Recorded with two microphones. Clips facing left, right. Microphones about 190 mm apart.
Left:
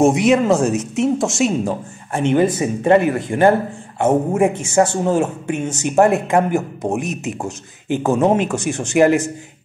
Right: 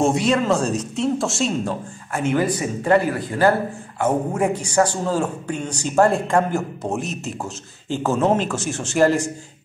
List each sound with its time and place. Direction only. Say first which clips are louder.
0.0 s speech: left 5 dB; 20° left (ahead or behind)